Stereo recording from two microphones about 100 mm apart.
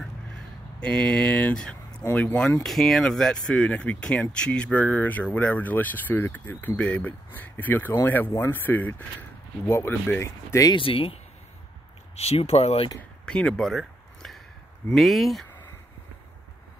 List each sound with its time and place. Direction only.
0.7 s speech: 10° left (ahead or behind); by 10.7 s 30° left (ahead or behind)
10.7 s speech: 65° left (ahead or behind)
12.2 s speech: 90° left
13.2 s a sound: 10° left (ahead or behind)
14.9 s speech: centre (ahead or behind)